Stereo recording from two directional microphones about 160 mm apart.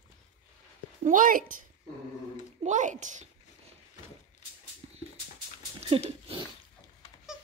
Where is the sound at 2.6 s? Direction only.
50° right (ahead or behind).